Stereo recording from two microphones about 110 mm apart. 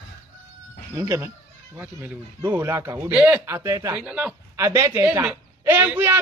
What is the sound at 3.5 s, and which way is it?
Speech, 30° right (ahead or behind).